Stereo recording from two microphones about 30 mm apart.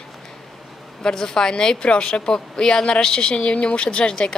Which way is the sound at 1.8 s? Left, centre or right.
Left.